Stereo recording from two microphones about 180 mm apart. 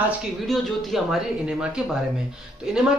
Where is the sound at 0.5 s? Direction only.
Centre (ahead or behind).